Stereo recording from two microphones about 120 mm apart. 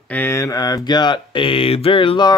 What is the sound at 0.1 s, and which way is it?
Speech, 20° left (ahead or behind).